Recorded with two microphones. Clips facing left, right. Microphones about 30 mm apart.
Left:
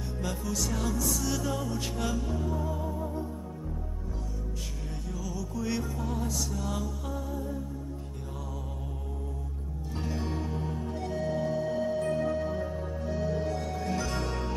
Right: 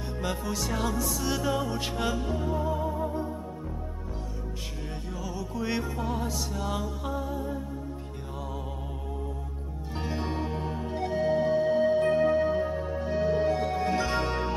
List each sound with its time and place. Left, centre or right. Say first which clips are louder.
0.2 s music: right 2 dB; right
5.2 s music: right 2 dB; right
9.9 s music: right 2 dB; right